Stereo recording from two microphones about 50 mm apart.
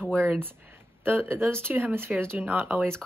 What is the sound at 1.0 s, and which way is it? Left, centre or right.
Speech, right.